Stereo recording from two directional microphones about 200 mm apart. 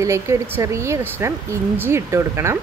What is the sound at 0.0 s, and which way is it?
A woman's voice, 15° right (ahead or behind).